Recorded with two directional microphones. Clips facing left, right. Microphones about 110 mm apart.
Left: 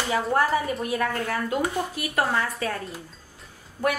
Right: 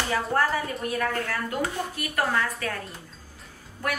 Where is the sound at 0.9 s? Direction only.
20° left (ahead or behind).